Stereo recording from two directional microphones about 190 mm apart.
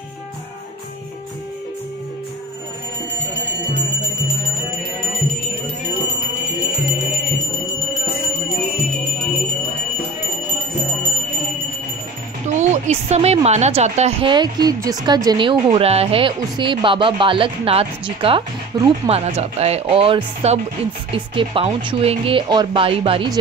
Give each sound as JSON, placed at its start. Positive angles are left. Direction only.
{"t": 12.4, "sound": "speech", "side_deg": -40}
{"t": 19.0, "sound": "speech", "side_deg": -35}